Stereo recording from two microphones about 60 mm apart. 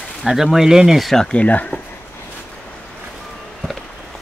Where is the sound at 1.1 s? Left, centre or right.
Centre.